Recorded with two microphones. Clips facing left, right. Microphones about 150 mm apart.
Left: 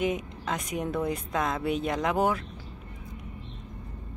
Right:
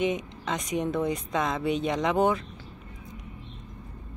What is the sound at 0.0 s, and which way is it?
A woman's voice, 5° left (ahead or behind).